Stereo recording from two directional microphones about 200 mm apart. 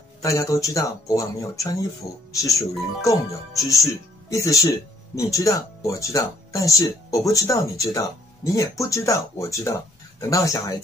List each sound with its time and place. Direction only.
0.2 s speech: 15° left (ahead or behind)
3.0 s speech: 15° left (ahead or behind)